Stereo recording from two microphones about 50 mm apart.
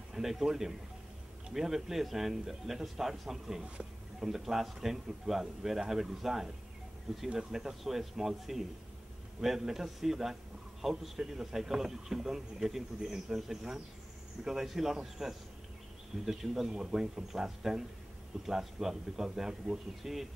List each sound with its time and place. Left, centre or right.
0.1 s a man's voice: centre
3.6 s a sound: right
4.3 s a man's voice: centre